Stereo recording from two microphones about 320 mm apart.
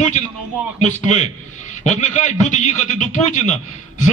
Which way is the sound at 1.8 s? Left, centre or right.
Left.